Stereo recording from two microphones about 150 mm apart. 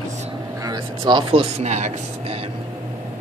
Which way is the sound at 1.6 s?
50° right (ahead or behind).